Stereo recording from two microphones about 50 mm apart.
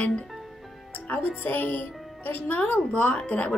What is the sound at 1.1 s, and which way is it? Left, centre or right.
Speech, left.